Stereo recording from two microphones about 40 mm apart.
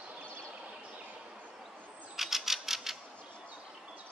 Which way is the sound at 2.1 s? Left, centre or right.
Centre.